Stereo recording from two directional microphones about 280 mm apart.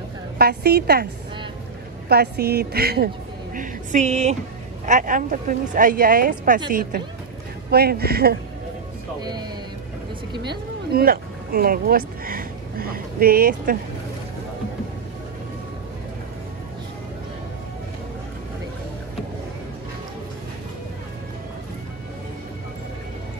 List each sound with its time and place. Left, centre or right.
0.4 s a woman's voice: right
2.0 s a woman's voice: right
7.7 s a woman's voice: right
9.2 s speech: centre
11.0 s speech: right